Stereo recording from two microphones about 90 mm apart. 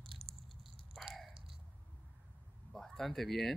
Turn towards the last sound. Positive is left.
turn(degrees=0)  # may be behind; listen again after turning